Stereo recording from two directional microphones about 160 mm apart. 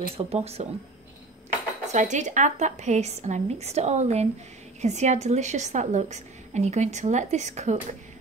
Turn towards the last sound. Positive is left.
turn(degrees=-45)  # may be behind; listen again after turning